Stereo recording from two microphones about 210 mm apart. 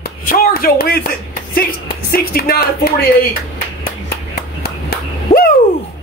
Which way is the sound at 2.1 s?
45° left (ahead or behind).